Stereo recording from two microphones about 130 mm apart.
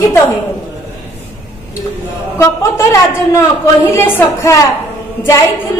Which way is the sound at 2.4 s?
20° left (ahead or behind).